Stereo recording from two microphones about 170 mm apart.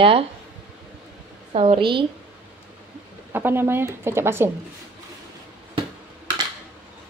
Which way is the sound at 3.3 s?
15° right (ahead or behind).